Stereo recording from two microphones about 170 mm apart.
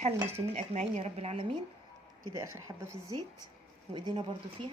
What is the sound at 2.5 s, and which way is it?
A woman's voice, 15° right (ahead or behind).